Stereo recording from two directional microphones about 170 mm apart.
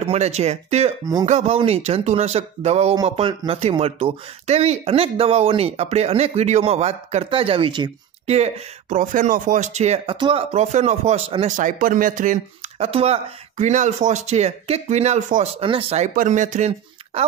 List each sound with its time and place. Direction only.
0.0 s speech: 40° right (ahead or behind)
8.3 s a man's voice: 45° right (ahead or behind)
10.1 s speech: 25° right (ahead or behind)
10.5 s a man's voice: 40° right (ahead or behind)
12.7 s speech: 35° right (ahead or behind)
15.6 s speech: 30° right (ahead or behind)
16.2 s speech: 45° right (ahead or behind)